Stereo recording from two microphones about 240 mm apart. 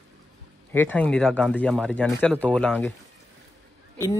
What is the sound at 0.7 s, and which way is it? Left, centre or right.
Speech, centre.